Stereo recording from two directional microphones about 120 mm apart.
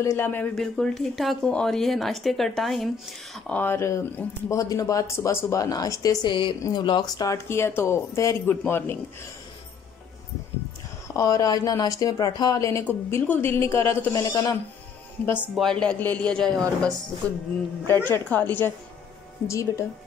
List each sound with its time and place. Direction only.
0.0 s speech: 20° left (ahead or behind)
0.6 s speech: 5° left (ahead or behind)
3.3 s speech: 10° left (ahead or behind); by 7.3 s 35° left (ahead or behind)
7.3 s speech: 20° left (ahead or behind)
11.1 s speech: 30° left (ahead or behind)
14.1 s speech: 30° left (ahead or behind)
15.5 s a woman's voice: 5° left (ahead or behind)
17.8 s a woman's voice: 20° left (ahead or behind)